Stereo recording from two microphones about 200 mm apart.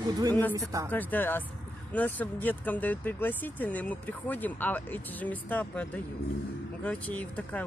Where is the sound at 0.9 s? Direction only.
10° left (ahead or behind).